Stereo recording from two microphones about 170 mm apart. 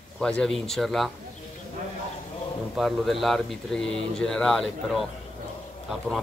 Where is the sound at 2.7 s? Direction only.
Centre (ahead or behind).